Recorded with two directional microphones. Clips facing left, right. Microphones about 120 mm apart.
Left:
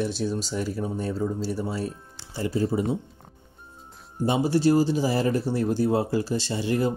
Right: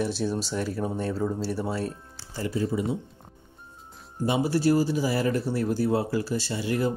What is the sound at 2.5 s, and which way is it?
Speech, 35° left (ahead or behind).